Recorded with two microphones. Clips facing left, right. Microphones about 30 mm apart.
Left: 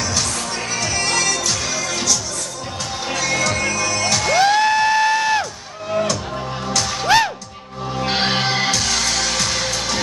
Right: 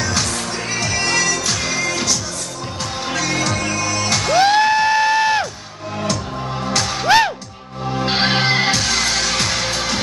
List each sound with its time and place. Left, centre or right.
0.0 s music: right
3.1 s music: right
6.6 s music: right
7.1 s music: centre; by 9.9 s right